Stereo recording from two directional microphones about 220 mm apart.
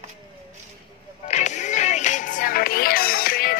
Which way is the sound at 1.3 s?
30° left (ahead or behind).